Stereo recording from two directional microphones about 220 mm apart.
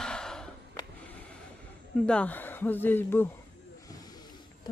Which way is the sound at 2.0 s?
5° left (ahead or behind).